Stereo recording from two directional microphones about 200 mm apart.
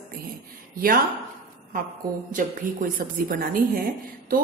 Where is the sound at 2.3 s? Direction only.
45° right (ahead or behind).